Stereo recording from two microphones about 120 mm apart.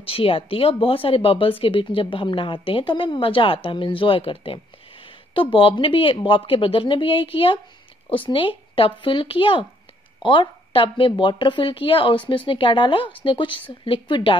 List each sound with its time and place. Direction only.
0.0 s speech: 50° left (ahead or behind)